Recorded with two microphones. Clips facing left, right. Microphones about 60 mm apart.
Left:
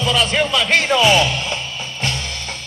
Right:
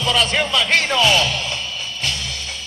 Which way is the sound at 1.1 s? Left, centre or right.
Left.